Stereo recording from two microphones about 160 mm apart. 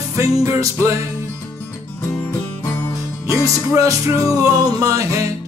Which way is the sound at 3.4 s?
20° right (ahead or behind).